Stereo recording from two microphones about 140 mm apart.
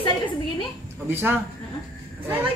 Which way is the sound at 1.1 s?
15° right (ahead or behind).